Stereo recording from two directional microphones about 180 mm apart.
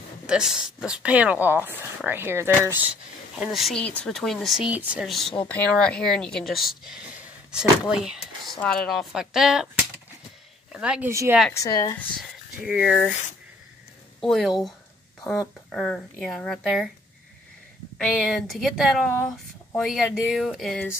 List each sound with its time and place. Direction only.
0.3 s speech: 5° right (ahead or behind)
3.3 s speech: centre (ahead or behind)
10.7 s speech: 5° right (ahead or behind)
11.5 s speech: 20° left (ahead or behind)
12.2 s speech: 5° right (ahead or behind)
14.2 s speech: centre (ahead or behind)
17.9 s speech: 5° left (ahead or behind)